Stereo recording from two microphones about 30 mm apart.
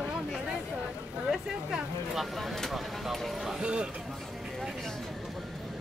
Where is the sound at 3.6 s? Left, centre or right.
Right.